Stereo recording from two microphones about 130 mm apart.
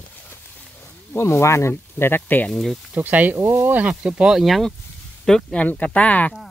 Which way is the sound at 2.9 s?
10° right (ahead or behind).